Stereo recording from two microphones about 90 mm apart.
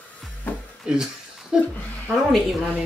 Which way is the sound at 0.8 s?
5° right (ahead or behind).